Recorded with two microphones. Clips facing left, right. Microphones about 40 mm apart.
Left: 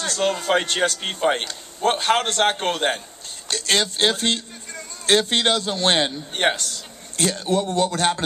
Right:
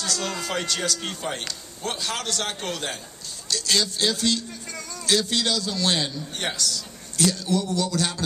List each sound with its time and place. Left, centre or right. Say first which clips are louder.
0.0 s a man's voice: left 6 dB; left